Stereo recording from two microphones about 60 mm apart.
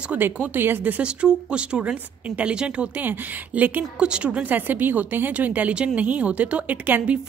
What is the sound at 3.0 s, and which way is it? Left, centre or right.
Speech, right.